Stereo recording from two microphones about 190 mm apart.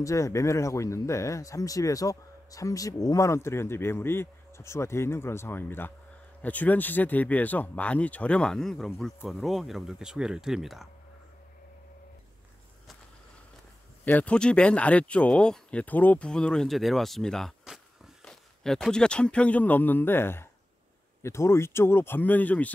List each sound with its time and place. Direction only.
0.0 s speech: 15° left (ahead or behind); by 10.9 s centre (ahead or behind)
14.0 s speech: 10° left (ahead or behind)